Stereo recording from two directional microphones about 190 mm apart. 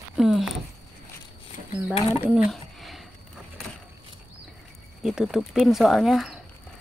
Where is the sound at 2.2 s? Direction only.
5° right (ahead or behind).